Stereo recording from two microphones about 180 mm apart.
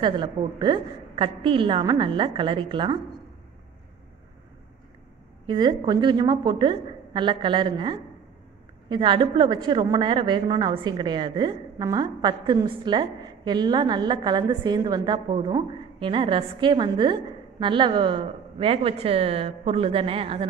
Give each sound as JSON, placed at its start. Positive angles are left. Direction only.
{"t": 0.0, "sound": "a woman's voice", "side_deg": -25}
{"t": 5.5, "sound": "a woman's voice", "side_deg": -25}